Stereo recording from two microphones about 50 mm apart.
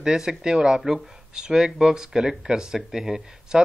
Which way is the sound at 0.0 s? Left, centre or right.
Centre.